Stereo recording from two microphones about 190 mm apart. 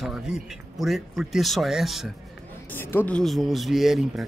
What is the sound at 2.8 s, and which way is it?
Speech, 10° left (ahead or behind).